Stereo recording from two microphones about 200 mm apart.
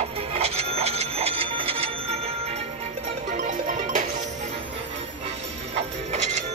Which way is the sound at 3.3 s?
40° right (ahead or behind).